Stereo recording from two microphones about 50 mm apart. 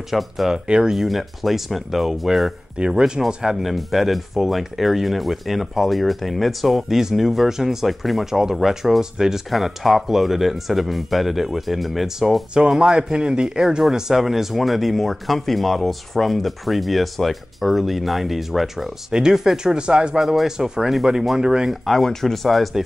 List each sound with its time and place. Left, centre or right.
0.1 s speech: centre
0.7 s speech: centre
0.9 s speech: centre
12.5 s speech: centre
20.2 s speech: centre
21.6 s speech: centre